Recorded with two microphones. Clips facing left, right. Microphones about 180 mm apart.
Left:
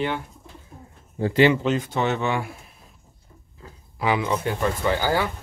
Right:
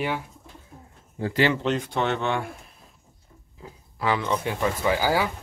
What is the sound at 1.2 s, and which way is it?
Speech, 20° left (ahead or behind).